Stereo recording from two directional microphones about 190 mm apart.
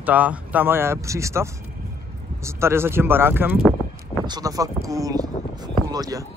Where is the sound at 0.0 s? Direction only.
10° right (ahead or behind).